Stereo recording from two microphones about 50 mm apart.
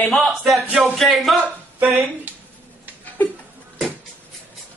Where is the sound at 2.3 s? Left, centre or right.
Right.